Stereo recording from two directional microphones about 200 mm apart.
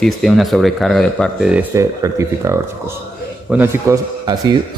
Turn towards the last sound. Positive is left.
turn(degrees=-20)  # may be behind; listen again after turning